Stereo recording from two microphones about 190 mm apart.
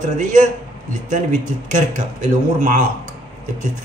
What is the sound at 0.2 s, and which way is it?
A man's voice, 40° right (ahead or behind).